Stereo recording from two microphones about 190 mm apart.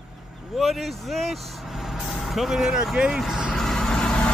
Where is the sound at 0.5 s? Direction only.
Centre (ahead or behind).